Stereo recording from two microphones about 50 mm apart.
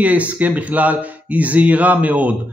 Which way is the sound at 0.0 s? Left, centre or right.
Right.